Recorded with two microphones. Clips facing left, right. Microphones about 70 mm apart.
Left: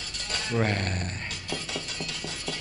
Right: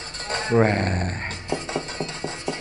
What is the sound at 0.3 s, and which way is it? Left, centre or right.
Music, right.